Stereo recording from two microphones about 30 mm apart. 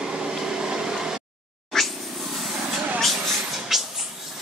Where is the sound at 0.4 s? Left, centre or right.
Right.